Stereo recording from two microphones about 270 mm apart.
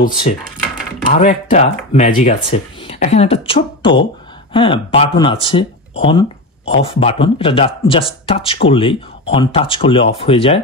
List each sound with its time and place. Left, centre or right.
1.0 s speech: left